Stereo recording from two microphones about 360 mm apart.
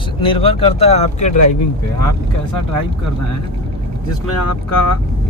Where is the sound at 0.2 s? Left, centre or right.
Centre.